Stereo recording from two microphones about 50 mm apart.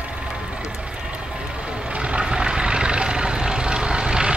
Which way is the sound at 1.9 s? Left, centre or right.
Right.